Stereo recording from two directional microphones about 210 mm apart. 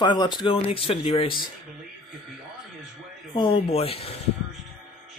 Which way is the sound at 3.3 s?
25° left (ahead or behind).